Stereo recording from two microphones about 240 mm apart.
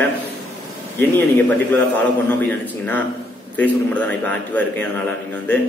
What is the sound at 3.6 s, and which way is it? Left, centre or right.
A man's voice, centre.